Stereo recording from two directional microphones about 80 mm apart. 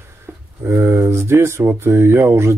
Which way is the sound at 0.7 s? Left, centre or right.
Right.